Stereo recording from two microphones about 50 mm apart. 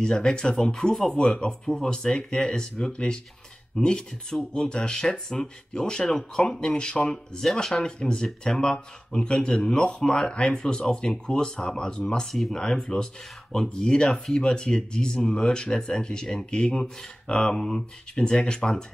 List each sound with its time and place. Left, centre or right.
0.0 s speech: centre